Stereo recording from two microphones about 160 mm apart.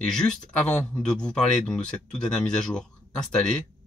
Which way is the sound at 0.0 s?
5° left (ahead or behind).